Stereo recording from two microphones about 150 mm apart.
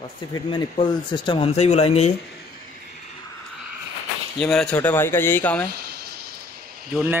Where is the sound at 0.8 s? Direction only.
35° left (ahead or behind).